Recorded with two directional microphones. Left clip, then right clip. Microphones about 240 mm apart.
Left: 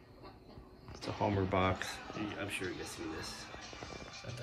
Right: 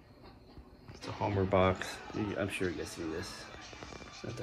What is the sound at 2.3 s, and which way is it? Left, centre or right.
Speech, centre.